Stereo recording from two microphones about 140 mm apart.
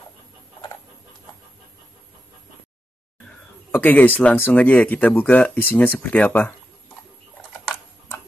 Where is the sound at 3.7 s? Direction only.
10° left (ahead or behind).